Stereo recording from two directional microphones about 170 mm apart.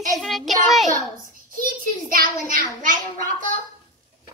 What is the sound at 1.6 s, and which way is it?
A child's voice, 55° right (ahead or behind).